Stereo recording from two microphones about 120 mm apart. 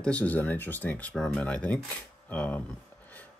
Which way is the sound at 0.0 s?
10° left (ahead or behind).